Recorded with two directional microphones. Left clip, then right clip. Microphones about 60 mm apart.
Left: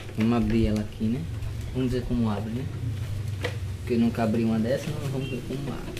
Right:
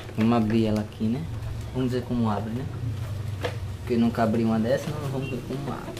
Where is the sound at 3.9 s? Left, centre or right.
Centre.